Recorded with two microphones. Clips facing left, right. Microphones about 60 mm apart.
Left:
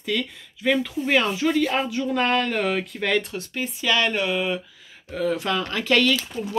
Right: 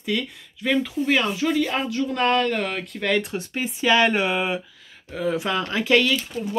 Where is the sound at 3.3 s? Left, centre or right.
Centre.